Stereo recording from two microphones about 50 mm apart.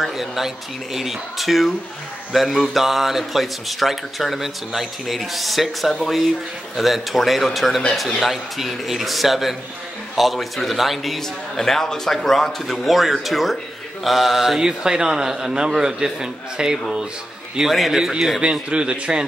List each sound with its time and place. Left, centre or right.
0.0 s a man's voice: centre
14.6 s a man's voice: centre
17.6 s a man's voice: centre
18.4 s a man's voice: right